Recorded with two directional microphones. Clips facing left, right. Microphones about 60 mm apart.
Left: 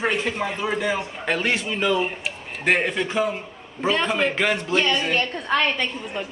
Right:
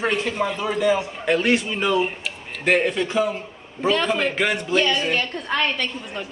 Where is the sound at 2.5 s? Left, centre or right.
Centre.